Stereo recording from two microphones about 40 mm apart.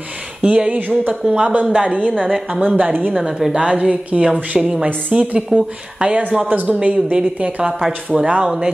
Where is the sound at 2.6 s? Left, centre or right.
Right.